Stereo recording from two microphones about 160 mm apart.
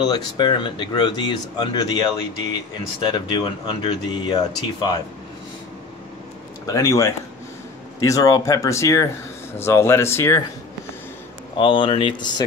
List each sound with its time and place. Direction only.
0.0 s speech: 25° left (ahead or behind)
3.3 s speech: 30° left (ahead or behind)
6.6 s speech: 20° left (ahead or behind)
11.5 s speech: 30° left (ahead or behind)